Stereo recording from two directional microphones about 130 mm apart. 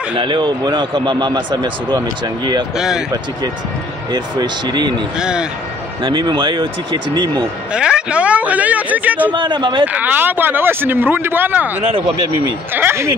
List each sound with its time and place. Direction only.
0.2 s a man's voice: 35° right (ahead or behind)
4.1 s a man's voice: 35° right (ahead or behind)
5.2 s speech: 5° right (ahead or behind)
6.0 s a man's voice: 35° right (ahead or behind)
7.7 s speech: 5° right (ahead or behind)
9.3 s a man's voice: 40° right (ahead or behind)
9.9 s speech: 15° right (ahead or behind)
12.7 s speech: 20° right (ahead or behind)